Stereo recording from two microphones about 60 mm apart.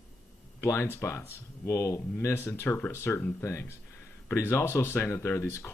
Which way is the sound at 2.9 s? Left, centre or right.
Left.